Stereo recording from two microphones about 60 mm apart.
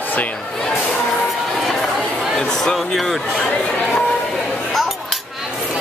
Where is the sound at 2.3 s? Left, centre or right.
Centre.